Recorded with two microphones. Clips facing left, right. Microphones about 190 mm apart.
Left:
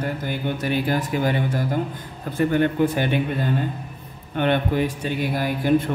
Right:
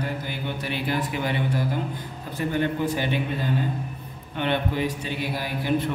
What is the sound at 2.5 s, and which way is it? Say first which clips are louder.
Speech: left 4 dB; 55° left (ahead or behind).